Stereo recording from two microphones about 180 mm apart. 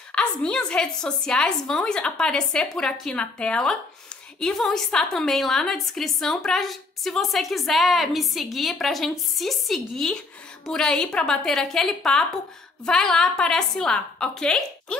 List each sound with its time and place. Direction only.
0.1 s a woman's voice: 5° left (ahead or behind)